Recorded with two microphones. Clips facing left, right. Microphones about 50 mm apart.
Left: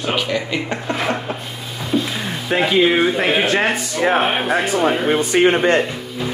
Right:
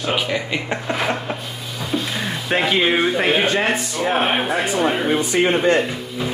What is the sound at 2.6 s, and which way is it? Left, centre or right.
Speech, centre.